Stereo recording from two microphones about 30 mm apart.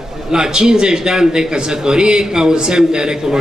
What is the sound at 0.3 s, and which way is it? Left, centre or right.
A man's voice, right.